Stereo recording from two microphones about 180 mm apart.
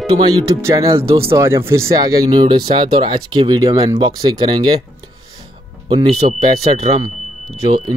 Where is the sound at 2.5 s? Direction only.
25° right (ahead or behind).